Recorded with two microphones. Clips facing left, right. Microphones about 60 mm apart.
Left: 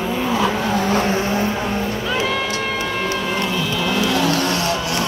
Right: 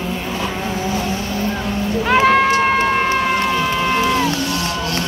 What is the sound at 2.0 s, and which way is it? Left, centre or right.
Run, right.